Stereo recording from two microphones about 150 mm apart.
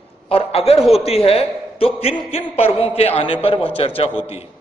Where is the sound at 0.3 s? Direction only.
40° left (ahead or behind).